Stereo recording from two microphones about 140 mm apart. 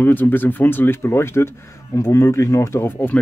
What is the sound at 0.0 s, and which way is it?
Speech, 15° left (ahead or behind).